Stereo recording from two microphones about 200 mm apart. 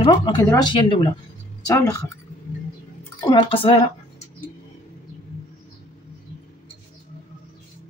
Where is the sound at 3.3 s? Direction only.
25° left (ahead or behind).